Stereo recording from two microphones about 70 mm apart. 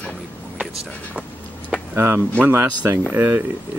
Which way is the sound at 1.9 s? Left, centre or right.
Right.